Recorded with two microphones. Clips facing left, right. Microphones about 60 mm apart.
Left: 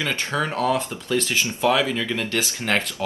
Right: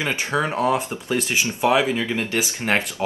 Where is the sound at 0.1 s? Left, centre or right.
Centre.